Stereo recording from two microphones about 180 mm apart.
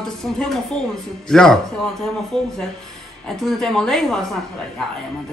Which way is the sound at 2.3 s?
30° right (ahead or behind).